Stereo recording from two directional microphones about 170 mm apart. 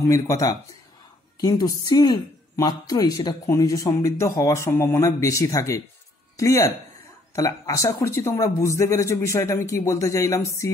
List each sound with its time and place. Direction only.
0.0 s speech: 20° left (ahead or behind)